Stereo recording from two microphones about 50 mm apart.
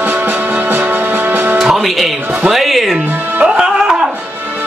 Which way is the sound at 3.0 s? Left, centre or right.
Right.